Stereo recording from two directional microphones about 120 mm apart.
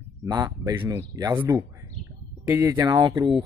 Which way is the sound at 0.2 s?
35° right (ahead or behind).